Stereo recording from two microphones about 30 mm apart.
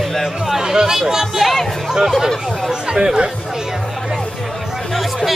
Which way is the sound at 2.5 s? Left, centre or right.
Centre.